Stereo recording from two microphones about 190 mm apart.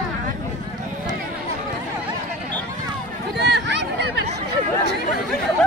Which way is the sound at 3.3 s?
65° right (ahead or behind).